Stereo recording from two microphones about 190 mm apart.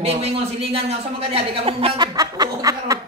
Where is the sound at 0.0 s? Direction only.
30° right (ahead or behind).